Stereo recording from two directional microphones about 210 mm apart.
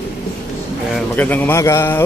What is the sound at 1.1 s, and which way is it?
Speech, 10° left (ahead or behind).